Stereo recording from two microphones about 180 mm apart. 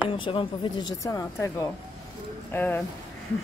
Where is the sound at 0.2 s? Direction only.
30° left (ahead or behind); by 2.8 s 10° left (ahead or behind).